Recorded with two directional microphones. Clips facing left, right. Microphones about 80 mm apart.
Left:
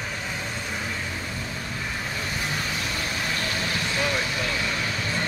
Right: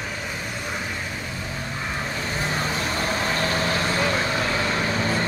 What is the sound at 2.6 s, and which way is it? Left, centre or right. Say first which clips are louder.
Vehicle: right 4 dB; right.